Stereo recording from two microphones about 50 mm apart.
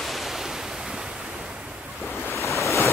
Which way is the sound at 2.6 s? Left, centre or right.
Left.